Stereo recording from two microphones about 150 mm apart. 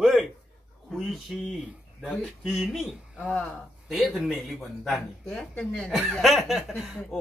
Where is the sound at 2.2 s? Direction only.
Centre (ahead or behind).